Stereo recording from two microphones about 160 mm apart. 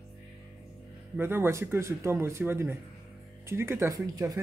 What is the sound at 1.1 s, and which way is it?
Speech, 15° right (ahead or behind).